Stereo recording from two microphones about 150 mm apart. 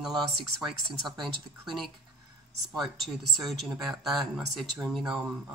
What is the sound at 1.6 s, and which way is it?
Speech, centre (ahead or behind).